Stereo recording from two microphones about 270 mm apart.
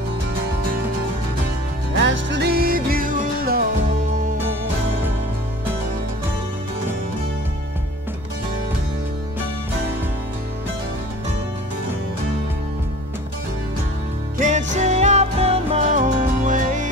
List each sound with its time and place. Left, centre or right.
2.0 s music: right
14.4 s music: right